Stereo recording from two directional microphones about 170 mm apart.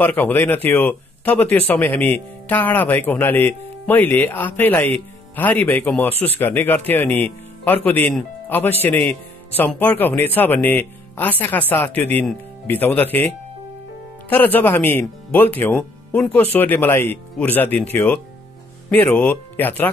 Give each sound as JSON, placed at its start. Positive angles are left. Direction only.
{"t": 0.0, "sound": "speech", "side_deg": 10}
{"t": 14.3, "sound": "speech", "side_deg": 10}